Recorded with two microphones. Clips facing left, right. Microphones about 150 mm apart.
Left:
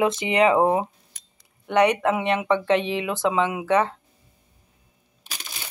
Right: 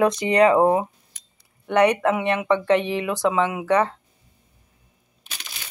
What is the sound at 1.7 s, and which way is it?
Speech, 20° left (ahead or behind).